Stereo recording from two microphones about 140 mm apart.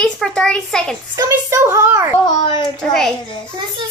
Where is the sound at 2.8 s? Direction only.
5° left (ahead or behind).